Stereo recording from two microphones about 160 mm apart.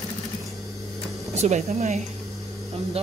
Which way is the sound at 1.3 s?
45° right (ahead or behind).